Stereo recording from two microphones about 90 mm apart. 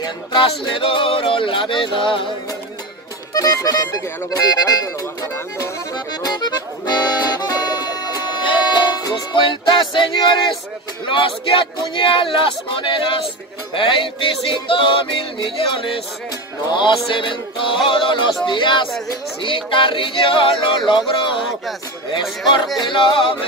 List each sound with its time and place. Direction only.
0.0 s speech: 60° left (ahead or behind)
3.3 s speech: 45° left (ahead or behind)
5.9 s accordion: 50° left (ahead or behind)
11.1 s speech: 75° left (ahead or behind)
22.8 s speech: 65° left (ahead or behind)